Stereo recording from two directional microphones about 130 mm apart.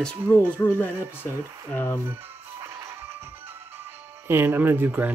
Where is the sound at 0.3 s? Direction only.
15° left (ahead or behind).